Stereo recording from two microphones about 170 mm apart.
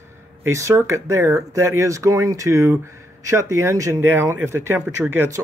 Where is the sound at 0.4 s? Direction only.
15° right (ahead or behind).